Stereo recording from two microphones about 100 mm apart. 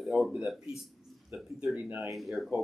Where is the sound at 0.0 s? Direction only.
Centre (ahead or behind).